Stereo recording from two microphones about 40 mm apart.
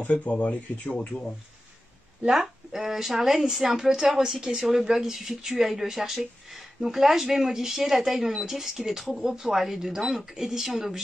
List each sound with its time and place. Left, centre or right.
0.1 s speech: left
2.2 s speech: centre